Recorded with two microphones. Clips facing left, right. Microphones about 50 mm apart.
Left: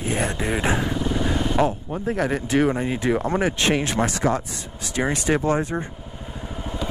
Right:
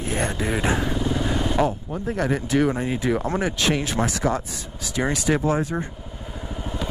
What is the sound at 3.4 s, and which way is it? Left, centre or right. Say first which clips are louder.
Speech: left 1 dB; left.